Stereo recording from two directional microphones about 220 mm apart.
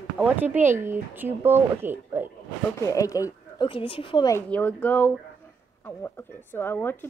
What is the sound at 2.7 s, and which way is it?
Speech, 15° left (ahead or behind).